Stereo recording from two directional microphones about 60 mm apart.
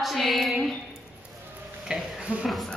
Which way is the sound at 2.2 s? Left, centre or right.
Centre.